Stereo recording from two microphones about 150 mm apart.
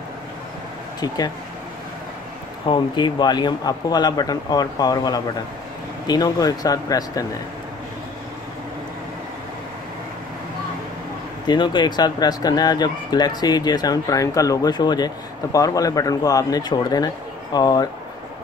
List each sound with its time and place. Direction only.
1.0 s speech: 25° left (ahead or behind)
2.6 s speech: 30° left (ahead or behind)
11.4 s speech: 30° left (ahead or behind)